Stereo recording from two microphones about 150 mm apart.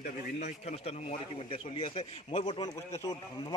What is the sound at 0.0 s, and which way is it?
A man's voice, 50° left (ahead or behind).